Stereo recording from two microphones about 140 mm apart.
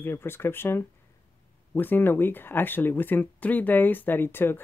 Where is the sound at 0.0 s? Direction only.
15° left (ahead or behind).